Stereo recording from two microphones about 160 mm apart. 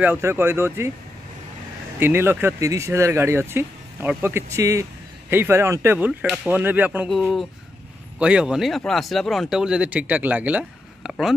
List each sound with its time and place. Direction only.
0.0 s speech: 15° right (ahead or behind)
2.0 s speech: 15° right (ahead or behind)
6.3 s speech: centre (ahead or behind)
7.1 s speech: centre (ahead or behind)